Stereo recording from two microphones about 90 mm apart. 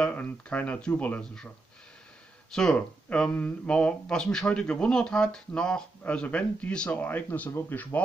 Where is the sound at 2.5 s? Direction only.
5° left (ahead or behind).